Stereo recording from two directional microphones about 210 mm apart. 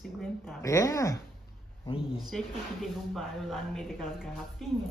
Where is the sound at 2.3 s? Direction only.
Centre (ahead or behind).